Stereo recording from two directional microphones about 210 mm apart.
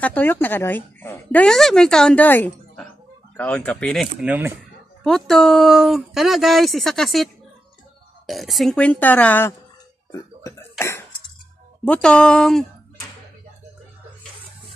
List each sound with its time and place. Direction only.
0.0 s a woman's voice: 10° left (ahead or behind)
8.3 s speech: centre (ahead or behind)
10.4 s cough: 15° left (ahead or behind)
11.8 s speech: 5° left (ahead or behind)